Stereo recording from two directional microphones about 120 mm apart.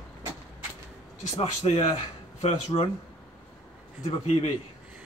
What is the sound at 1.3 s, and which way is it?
Speech, 60° left (ahead or behind).